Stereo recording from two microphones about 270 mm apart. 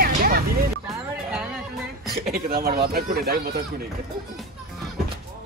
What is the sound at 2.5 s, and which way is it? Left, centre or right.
Speech, right.